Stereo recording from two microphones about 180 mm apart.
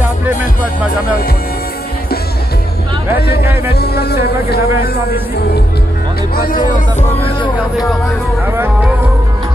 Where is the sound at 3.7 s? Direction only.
60° left (ahead or behind).